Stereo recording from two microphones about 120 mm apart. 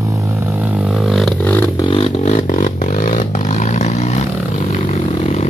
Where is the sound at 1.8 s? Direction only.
45° left (ahead or behind).